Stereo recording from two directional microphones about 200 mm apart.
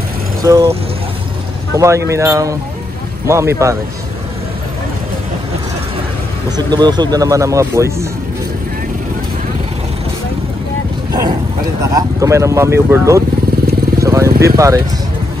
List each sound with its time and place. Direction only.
0.4 s speech: 15° right (ahead or behind)
1.8 s speech: 15° right (ahead or behind)
6.5 s speech: 20° right (ahead or behind)
11.1 s boat: 20° right (ahead or behind)
11.8 s speech: 15° right (ahead or behind)